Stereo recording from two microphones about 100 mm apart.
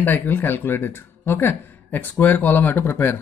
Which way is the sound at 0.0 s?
20° left (ahead or behind).